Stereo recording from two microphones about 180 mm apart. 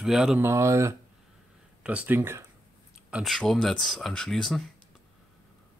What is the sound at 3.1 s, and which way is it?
Speech, centre (ahead or behind).